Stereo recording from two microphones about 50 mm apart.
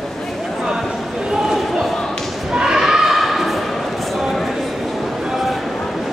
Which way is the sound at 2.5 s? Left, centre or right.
Centre.